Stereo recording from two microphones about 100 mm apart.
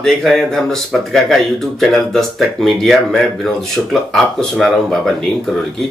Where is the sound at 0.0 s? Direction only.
5° left (ahead or behind).